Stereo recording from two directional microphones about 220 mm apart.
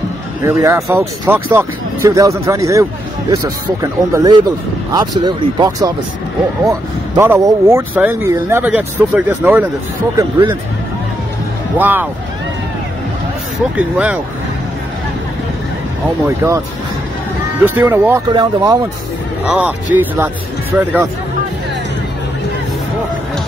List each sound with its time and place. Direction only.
0.4 s speech: 10° right (ahead or behind)
10.1 s speech: 20° right (ahead or behind)
11.8 s speech: 10° right (ahead or behind)
13.7 s speech: 5° right (ahead or behind)
16.3 s speech: 15° right (ahead or behind)
17.6 s speech: 10° right (ahead or behind)
19.4 s speech: 5° right (ahead or behind)